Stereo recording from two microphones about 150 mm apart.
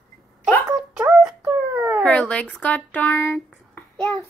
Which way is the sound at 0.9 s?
5° right (ahead or behind).